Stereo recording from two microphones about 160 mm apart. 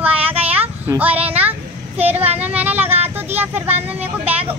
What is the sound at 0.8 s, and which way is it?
Speech, 10° right (ahead or behind).